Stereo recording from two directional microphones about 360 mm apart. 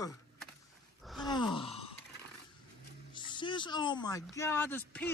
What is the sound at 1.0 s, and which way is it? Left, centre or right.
Groan, centre.